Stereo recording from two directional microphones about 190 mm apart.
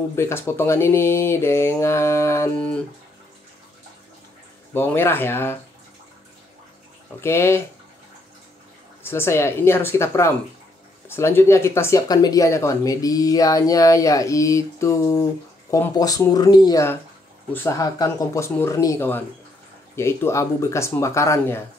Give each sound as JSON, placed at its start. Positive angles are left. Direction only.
{"t": 0.1, "sound": "speech", "side_deg": 10}
{"t": 4.7, "sound": "speech", "side_deg": 10}
{"t": 7.2, "sound": "speech", "side_deg": 15}
{"t": 9.0, "sound": "speech", "side_deg": 15}